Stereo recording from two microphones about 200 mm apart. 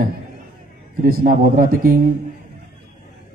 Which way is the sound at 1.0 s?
45° right (ahead or behind).